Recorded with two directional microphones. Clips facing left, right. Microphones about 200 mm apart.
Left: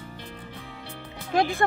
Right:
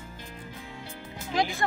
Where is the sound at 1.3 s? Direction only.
55° left (ahead or behind).